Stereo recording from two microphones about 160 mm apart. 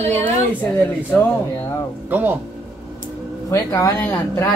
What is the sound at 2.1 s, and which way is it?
Speech, 10° right (ahead or behind).